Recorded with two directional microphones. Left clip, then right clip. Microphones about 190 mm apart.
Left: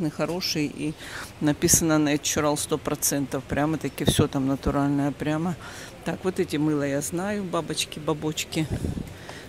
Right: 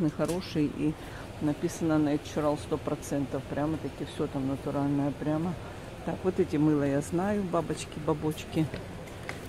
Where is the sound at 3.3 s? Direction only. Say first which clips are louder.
Left 6 dB; 30° left (ahead or behind).